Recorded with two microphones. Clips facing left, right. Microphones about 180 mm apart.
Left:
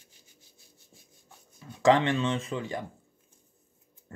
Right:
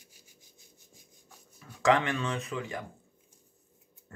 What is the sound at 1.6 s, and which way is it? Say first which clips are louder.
Speech: left 3 dB; 25° left (ahead or behind).